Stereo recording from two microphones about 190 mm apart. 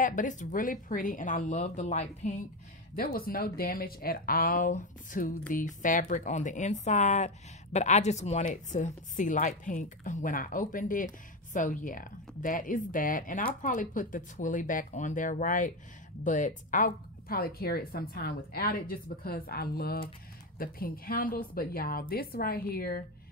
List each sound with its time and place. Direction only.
0.0 s speech: 45° left (ahead or behind)
3.0 s speech: 50° left (ahead or behind)